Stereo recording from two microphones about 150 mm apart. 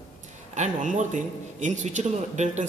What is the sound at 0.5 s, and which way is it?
Speech, 55° right (ahead or behind).